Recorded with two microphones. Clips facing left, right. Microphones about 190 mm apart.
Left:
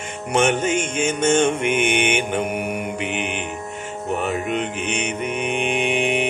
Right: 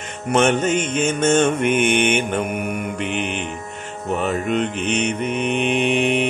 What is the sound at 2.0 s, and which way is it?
Mantra, 10° left (ahead or behind).